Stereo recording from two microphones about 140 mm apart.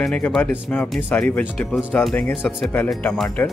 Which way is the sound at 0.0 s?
10° left (ahead or behind).